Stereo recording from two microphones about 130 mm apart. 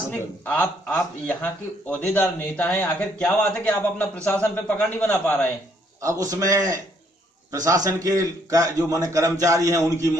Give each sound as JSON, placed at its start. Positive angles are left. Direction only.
{"t": 0.1, "sound": "speech", "side_deg": 15}
{"t": 5.9, "sound": "a man's voice", "side_deg": -25}